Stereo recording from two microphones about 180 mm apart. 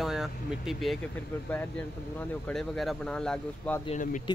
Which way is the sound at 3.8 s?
45° left (ahead or behind).